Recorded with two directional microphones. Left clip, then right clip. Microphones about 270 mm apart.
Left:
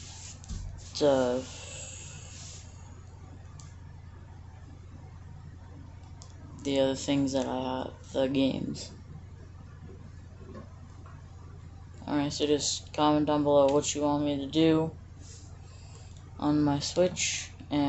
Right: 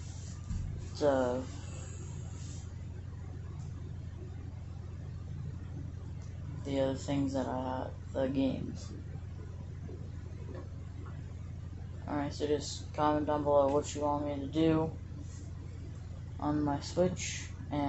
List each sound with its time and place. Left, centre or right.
0.9 s speech: left
6.6 s speech: left
12.1 s speech: left
16.3 s speech: left